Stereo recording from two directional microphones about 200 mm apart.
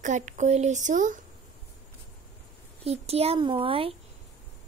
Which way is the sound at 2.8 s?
30° right (ahead or behind).